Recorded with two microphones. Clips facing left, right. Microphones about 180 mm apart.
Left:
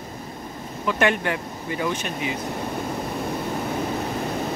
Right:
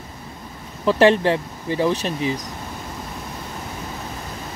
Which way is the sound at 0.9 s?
30° right (ahead or behind).